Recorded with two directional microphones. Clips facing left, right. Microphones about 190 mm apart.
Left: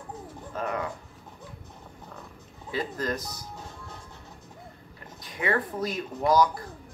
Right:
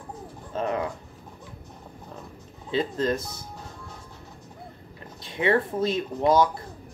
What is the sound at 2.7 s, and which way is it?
Speech, 25° right (ahead or behind).